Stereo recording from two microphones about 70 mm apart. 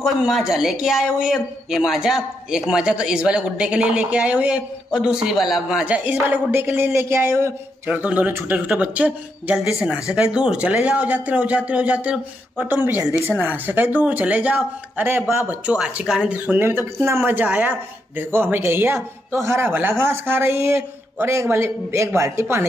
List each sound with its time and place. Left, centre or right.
0.0 s a man's voice: centre
5.9 s speech: right
7.9 s speech: right
8.3 s speech: right
8.5 s speech: centre
15.4 s a man's voice: centre
16.3 s speech: right
19.7 s speech: right